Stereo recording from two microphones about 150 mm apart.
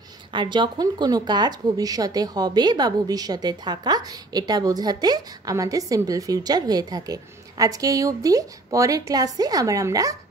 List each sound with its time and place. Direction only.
0.3 s speech: 30° right (ahead or behind)